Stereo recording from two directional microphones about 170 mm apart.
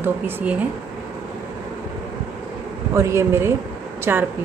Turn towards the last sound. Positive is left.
turn(degrees=-15)  # may be behind; listen again after turning